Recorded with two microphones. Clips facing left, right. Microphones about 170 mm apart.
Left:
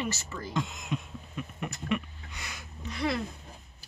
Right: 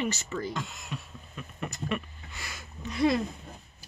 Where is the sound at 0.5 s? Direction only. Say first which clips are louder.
Left 5 dB; 15° left (ahead or behind).